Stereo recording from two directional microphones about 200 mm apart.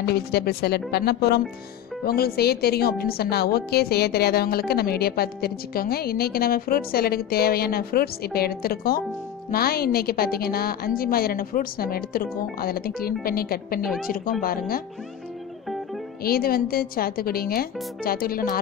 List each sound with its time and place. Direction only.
0.0 s a woman's voice: 55° left (ahead or behind)
16.3 s a woman's voice: 50° left (ahead or behind)